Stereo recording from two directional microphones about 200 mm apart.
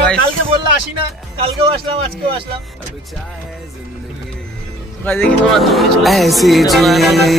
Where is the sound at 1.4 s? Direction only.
30° right (ahead or behind).